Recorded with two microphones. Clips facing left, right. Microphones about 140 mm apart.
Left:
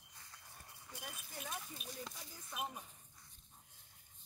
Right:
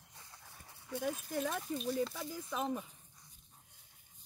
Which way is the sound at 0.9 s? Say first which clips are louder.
Right 15 dB; 70° right (ahead or behind).